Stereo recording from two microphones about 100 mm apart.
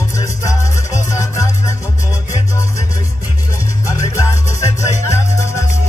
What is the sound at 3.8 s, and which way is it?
Music, 30° left (ahead or behind).